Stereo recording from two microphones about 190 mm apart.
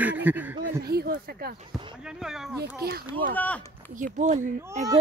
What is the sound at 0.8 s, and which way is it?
Speech, 55° right (ahead or behind).